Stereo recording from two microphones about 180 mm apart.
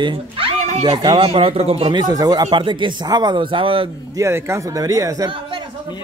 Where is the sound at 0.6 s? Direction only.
40° right (ahead or behind).